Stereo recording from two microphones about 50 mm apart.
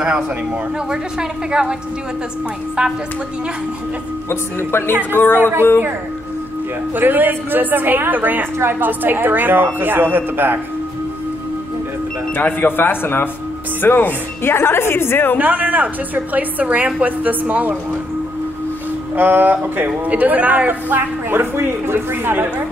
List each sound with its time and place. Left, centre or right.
1.5 s speech: centre
2.8 s speech: centre
4.3 s a woman's voice: left
5.1 s a woman's voice: left
5.4 s a woman's voice: right
7.0 s a woman's voice: right
8.5 s a woman's voice: right
8.8 s a woman's voice: right
12.4 s a woman's voice: left
15.3 s a woman's voice: right
19.1 s a woman's voice: right
20.1 s a woman's voice: right
21.3 s a woman's voice: right